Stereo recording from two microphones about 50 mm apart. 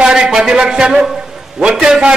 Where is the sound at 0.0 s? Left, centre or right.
Centre.